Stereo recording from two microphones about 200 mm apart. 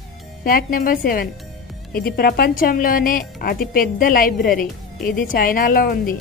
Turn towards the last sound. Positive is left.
turn(degrees=45)  # may be behind; listen again after turning